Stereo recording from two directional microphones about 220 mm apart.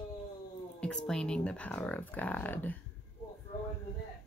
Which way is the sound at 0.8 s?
5° left (ahead or behind).